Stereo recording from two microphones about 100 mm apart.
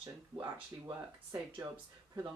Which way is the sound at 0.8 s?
45° right (ahead or behind).